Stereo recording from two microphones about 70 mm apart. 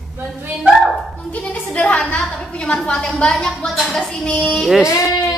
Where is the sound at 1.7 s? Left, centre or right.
Centre.